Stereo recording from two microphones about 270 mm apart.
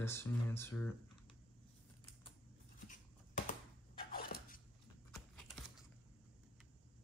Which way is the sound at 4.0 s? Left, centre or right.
Left.